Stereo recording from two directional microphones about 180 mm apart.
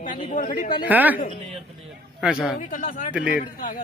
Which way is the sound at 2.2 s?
Centre (ahead or behind).